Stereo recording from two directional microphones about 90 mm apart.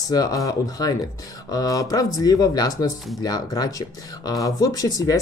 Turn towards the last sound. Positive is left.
turn(degrees=40)  # may be behind; listen again after turning